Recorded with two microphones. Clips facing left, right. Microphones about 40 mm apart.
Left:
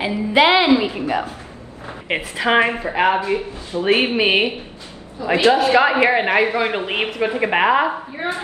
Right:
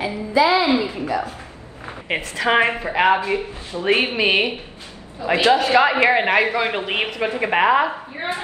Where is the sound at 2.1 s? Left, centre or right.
Centre.